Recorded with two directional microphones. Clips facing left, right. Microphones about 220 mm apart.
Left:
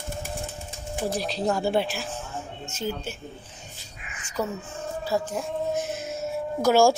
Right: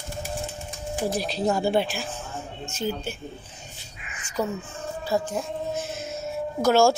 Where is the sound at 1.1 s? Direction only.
5° right (ahead or behind).